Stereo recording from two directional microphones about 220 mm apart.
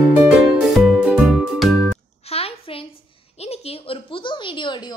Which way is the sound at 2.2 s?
25° left (ahead or behind).